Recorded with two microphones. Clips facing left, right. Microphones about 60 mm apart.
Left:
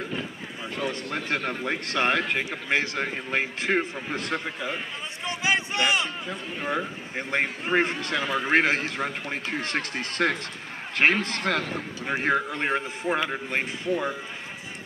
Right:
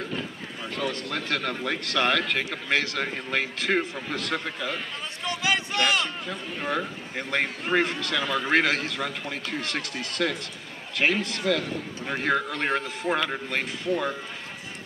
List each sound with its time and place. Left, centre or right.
0.0 s a sound: centre
1.1 s a man's voice: centre
5.2 s run: left
7.2 s a man's voice: left
12.0 s a man's voice: centre